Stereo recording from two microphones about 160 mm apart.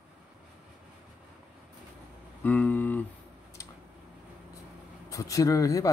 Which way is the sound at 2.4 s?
10° left (ahead or behind).